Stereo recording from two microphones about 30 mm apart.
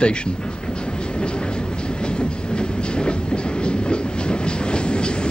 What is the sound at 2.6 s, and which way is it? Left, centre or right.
Train, left.